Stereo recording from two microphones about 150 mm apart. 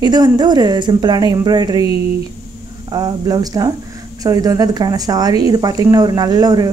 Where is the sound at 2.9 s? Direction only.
25° right (ahead or behind).